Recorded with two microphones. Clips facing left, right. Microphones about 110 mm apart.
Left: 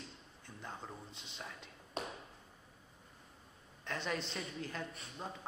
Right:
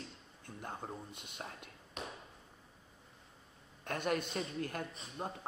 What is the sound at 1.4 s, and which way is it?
Speech, 45° right (ahead or behind).